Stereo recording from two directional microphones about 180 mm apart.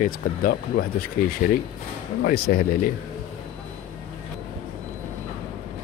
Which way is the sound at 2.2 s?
55° left (ahead or behind).